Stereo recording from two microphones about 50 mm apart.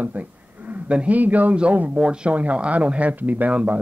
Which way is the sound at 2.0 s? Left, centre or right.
Right.